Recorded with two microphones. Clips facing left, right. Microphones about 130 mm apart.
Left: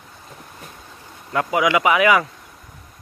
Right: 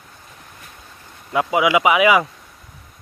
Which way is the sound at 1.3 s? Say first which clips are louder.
Right 2 dB; 15° right (ahead or behind).